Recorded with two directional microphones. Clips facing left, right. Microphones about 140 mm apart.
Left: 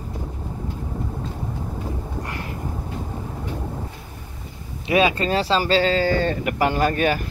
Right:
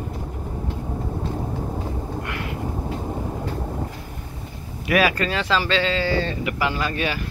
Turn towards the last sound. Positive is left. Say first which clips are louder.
# left 5 dB
turn(degrees=45)  # may be behind; listen again after turning